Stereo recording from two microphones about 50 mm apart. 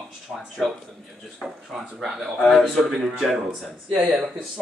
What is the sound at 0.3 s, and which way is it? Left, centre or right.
Speech, centre.